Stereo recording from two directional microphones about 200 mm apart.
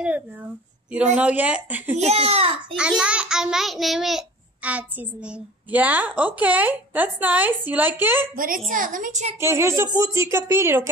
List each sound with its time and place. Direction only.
1.1 s a child's voice: 5° right (ahead or behind)
2.0 s a woman's voice: 30° right (ahead or behind)
2.7 s a child's voice: 5° right (ahead or behind)
8.4 s a woman's voice: 45° right (ahead or behind)
9.4 s a child's voice: 15° right (ahead or behind)